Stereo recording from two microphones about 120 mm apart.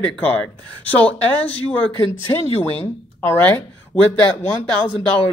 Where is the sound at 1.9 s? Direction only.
45° right (ahead or behind).